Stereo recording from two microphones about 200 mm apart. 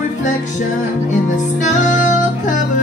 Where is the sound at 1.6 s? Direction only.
40° left (ahead or behind).